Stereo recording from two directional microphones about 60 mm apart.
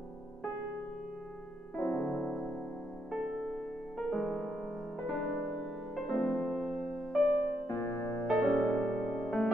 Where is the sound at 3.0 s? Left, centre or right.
Centre.